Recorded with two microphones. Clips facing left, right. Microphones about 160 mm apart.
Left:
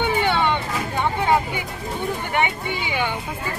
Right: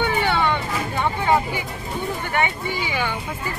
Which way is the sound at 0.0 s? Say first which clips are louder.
Left 1 dB; 20° left (ahead or behind).